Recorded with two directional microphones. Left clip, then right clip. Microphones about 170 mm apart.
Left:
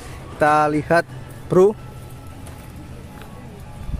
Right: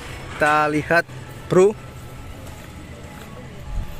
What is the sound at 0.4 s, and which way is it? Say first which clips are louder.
Speech: left 2 dB; 15° left (ahead or behind).